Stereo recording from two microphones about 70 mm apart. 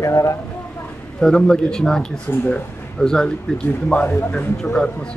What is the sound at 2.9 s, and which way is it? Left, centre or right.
Speech, centre.